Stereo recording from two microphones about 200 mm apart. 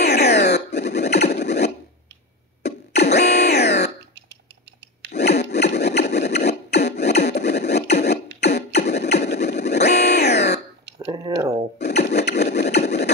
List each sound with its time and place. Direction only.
0.0 s music: 55° left (ahead or behind)
2.6 s a sound: 55° left (ahead or behind)
3.2 s music: 55° left (ahead or behind)
5.1 s wood: 55° left (ahead or behind)
7.2 s a sound: 55° left (ahead or behind)
7.9 s beatboxing: 55° left (ahead or behind)
9.8 s music: 55° left (ahead or behind)
11.1 s a sound: 20° right (ahead or behind)
11.8 s wood: 55° left (ahead or behind)